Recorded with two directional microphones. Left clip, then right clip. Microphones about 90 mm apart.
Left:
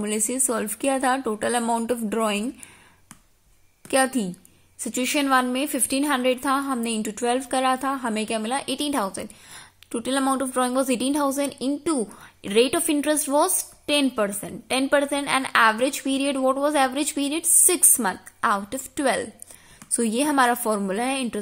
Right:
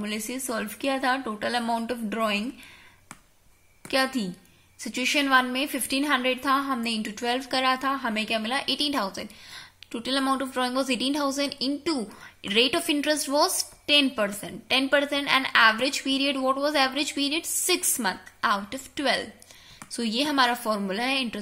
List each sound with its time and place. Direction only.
0.0 s a woman's voice: 65° left (ahead or behind)
1.2 s a woman's voice: 45° left (ahead or behind)
1.6 s a woman's voice: 60° left (ahead or behind)
3.8 s a woman's voice: 60° left (ahead or behind); by 7.4 s 40° left (ahead or behind)
7.7 s a woman's voice: 65° left (ahead or behind)
9.5 s a sound: 60° left (ahead or behind)
9.9 s a woman's voice: 45° left (ahead or behind)
10.6 s a woman's voice: 55° left (ahead or behind)
14.1 s a woman's voice: 20° left (ahead or behind)
14.4 s a woman's voice: 55° left (ahead or behind)
20.1 s a woman's voice: 70° left (ahead or behind)
20.7 s a woman's voice: 45° left (ahead or behind)